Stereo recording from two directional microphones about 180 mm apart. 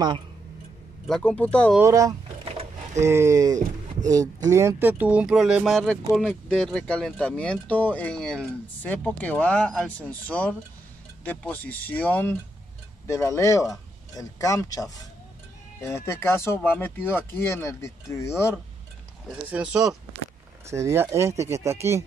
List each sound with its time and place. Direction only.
1.0 s speech: 5° left (ahead or behind)
1.8 s speech: 15° right (ahead or behind); by 18.5 s 15° left (ahead or behind)
19.5 s speech: 5° right (ahead or behind)
20.6 s speech: 15° right (ahead or behind)